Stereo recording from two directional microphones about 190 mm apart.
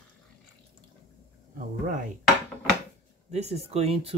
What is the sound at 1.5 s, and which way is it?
Speech, 45° right (ahead or behind).